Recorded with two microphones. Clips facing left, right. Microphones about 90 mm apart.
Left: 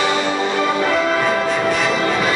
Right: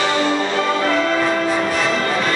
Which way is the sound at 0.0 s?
15° left (ahead or behind).